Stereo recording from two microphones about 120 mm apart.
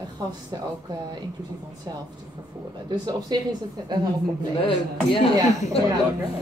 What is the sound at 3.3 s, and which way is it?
Speech, 35° right (ahead or behind).